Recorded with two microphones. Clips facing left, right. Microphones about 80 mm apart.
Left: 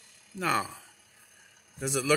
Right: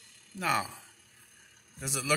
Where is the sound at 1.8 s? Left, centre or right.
Centre.